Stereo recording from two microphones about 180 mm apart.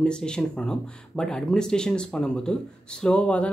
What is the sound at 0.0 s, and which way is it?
Speech, 5° left (ahead or behind).